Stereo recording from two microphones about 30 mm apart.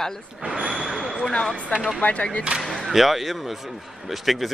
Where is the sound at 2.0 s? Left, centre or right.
Left.